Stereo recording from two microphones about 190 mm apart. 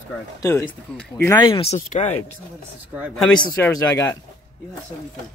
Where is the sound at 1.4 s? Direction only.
30° left (ahead or behind).